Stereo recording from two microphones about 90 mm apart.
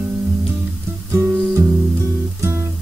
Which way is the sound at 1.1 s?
30° right (ahead or behind).